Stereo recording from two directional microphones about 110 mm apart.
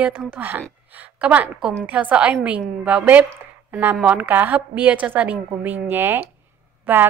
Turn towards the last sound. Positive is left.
turn(degrees=-15)  # may be behind; listen again after turning